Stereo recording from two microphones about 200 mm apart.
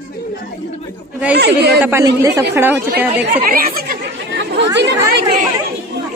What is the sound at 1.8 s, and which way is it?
Speech, 10° right (ahead or behind).